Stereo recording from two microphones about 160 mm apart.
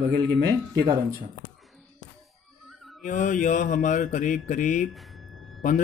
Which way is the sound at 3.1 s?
50° left (ahead or behind).